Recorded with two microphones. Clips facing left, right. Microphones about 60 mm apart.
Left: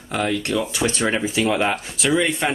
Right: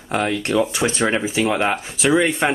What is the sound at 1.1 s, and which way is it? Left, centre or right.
Speech, centre.